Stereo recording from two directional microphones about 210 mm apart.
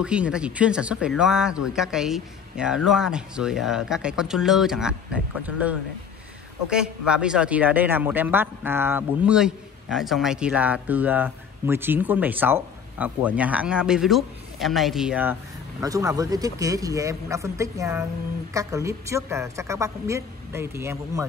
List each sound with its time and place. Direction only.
0.0 s speech: 5° right (ahead or behind)